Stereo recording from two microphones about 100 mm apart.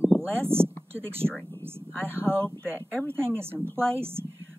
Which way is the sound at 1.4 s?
25° left (ahead or behind).